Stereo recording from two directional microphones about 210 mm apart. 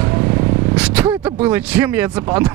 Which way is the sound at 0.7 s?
5° right (ahead or behind).